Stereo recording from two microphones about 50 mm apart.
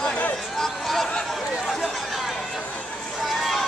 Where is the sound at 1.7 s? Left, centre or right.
Centre.